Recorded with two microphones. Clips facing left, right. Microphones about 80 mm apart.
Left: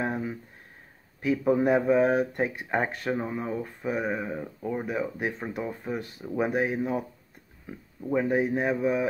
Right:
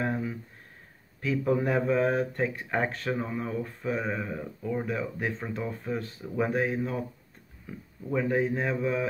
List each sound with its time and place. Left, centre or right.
0.0 s a sound: left
1.2 s speech: centre
8.1 s speech: left